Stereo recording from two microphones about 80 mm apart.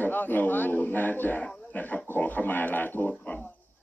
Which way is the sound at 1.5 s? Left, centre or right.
Centre.